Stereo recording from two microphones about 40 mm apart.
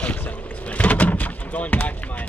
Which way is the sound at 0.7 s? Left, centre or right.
Left.